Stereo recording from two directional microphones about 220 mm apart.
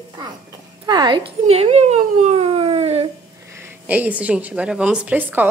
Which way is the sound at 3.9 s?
5° right (ahead or behind).